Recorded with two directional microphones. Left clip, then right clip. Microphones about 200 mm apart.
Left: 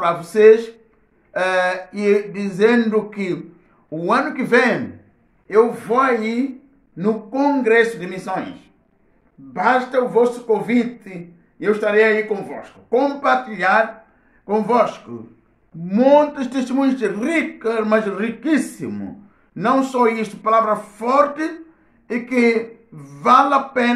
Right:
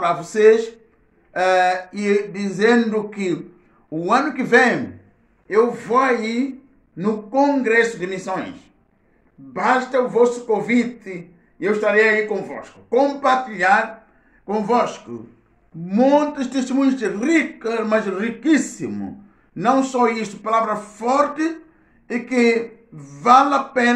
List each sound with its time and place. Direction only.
0.0 s speech: 15° left (ahead or behind)